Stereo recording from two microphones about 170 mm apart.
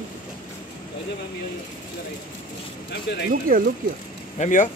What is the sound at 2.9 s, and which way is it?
Speech, 75° left (ahead or behind).